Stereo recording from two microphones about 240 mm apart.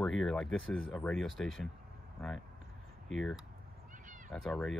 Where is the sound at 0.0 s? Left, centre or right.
Centre.